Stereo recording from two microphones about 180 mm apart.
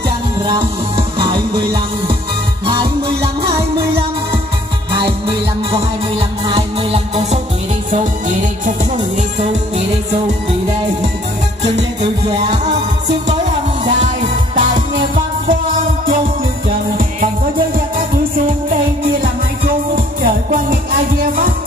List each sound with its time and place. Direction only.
0.5 s music: 30° right (ahead or behind)
2.6 s music: 25° right (ahead or behind)
5.7 s music: 35° right (ahead or behind)
8.6 s music: 40° right (ahead or behind)
13.8 s music: 45° right (ahead or behind)
16.6 s music: 50° right (ahead or behind)
20.2 s music: 50° right (ahead or behind)